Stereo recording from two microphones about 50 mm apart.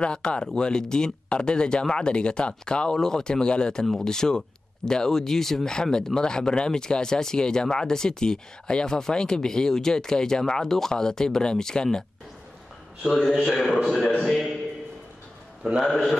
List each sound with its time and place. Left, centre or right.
0.0 s speech: left
13.0 s a man's voice: centre
14.3 s a man's voice: centre
15.8 s speech: centre